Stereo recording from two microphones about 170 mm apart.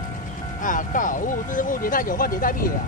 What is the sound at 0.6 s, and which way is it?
Speech, 50° left (ahead or behind).